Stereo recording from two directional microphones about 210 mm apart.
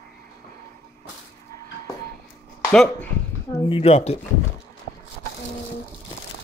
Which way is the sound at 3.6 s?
25° left (ahead or behind).